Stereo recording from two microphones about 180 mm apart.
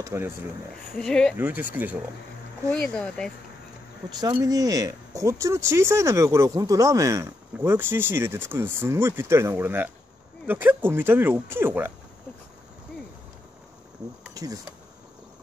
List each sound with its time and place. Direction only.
0.0 s speech: 15° right (ahead or behind)
0.9 s speech: 5° left (ahead or behind)
1.4 s speech: 10° right (ahead or behind)
2.7 s speech: 5° left (ahead or behind)
4.1 s speech: 20° right (ahead or behind)
14.3 s a sound: 20° right (ahead or behind)